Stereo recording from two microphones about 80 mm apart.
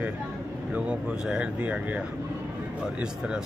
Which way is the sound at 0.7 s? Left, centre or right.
Centre.